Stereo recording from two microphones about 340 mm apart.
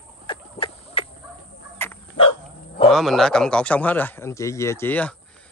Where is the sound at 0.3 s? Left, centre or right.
Centre.